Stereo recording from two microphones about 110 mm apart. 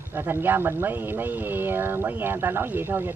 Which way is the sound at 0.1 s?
20° right (ahead or behind).